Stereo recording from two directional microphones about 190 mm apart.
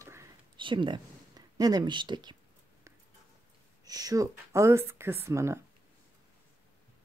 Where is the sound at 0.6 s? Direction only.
25° right (ahead or behind).